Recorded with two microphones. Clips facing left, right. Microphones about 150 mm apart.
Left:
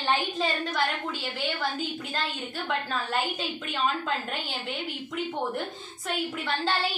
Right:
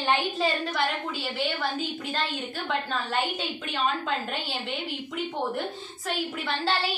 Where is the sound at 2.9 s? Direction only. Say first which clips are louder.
Right 1 dB; centre (ahead or behind).